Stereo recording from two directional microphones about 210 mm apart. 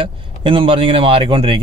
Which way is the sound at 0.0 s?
25° right (ahead or behind).